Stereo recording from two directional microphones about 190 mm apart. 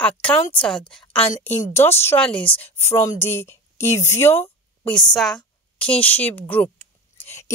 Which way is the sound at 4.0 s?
15° left (ahead or behind).